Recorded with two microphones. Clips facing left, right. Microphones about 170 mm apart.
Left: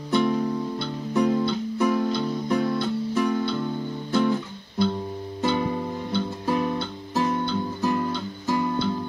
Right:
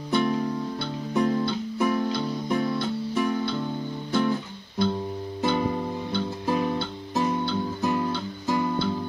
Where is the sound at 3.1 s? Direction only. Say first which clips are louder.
Left 2 dB; centre (ahead or behind).